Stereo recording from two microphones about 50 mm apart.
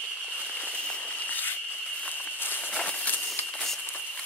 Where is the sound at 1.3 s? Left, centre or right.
Left.